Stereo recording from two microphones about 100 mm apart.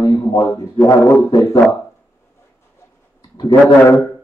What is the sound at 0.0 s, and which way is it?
A man's voice, 40° left (ahead or behind).